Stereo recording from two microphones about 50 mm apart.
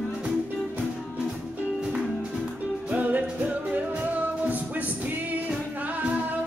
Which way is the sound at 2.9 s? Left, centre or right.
Right.